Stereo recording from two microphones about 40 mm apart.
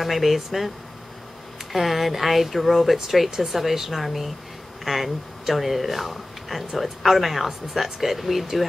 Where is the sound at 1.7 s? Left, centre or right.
Centre.